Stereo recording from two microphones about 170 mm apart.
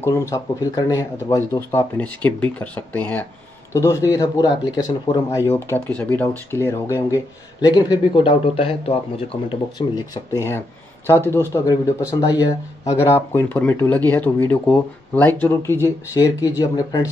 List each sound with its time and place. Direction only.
0.0 s a man's voice: 20° left (ahead or behind)
5.5 s a man's voice: 10° left (ahead or behind)